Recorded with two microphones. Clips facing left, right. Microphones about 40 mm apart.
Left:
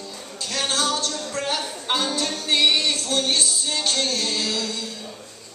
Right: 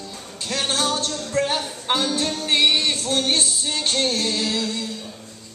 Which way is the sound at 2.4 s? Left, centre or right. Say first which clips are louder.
Even; right.